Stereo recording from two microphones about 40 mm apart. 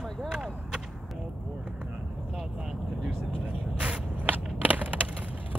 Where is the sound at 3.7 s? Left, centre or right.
Right.